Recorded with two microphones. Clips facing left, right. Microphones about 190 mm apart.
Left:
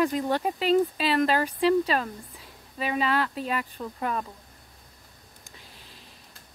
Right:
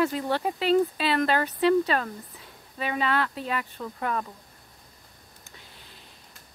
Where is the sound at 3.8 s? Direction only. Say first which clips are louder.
Even; 20° left (ahead or behind).